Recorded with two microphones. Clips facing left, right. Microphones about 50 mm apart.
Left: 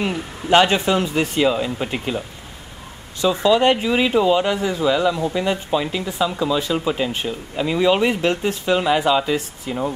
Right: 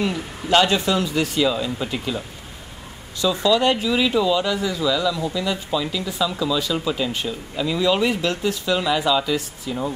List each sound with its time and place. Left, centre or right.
0.0 s speech: left
3.2 s speech: left